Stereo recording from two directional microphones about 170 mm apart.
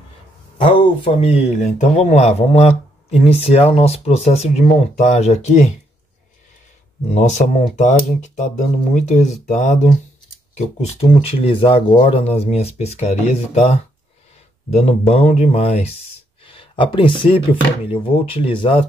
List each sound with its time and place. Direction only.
0.6 s speech: 30° left (ahead or behind)
7.1 s speech: 45° left (ahead or behind)
8.9 s speech: 45° left (ahead or behind)